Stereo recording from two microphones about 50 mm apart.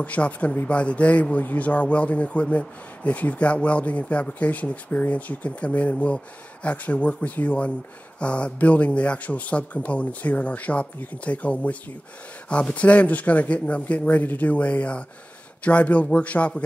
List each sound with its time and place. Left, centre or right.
0.0 s speech: left